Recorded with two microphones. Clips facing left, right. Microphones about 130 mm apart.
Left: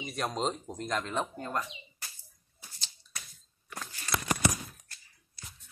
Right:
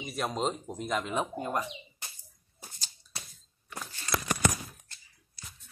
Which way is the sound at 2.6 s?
45° right (ahead or behind).